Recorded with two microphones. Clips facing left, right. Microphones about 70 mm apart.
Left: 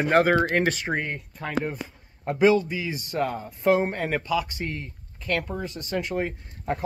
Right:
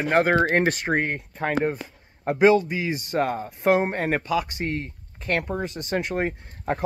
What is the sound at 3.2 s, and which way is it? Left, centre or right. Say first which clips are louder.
Speech: right 2 dB; right.